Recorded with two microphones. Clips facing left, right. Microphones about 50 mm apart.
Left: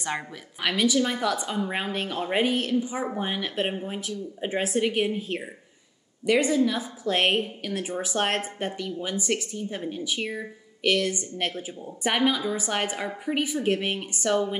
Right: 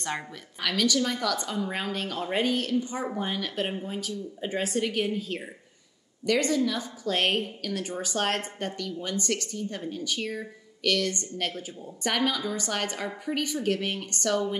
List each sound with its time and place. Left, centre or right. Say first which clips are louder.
0.1 s speech: left 2 dB; left
2.8 s speech: left 2 dB; centre